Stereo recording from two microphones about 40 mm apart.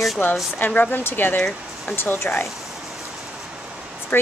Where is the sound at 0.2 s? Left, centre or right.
Left.